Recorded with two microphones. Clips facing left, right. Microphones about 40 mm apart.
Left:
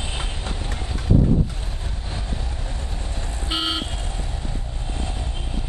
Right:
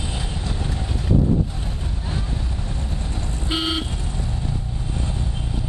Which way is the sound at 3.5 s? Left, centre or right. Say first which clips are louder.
Right 1 dB; centre.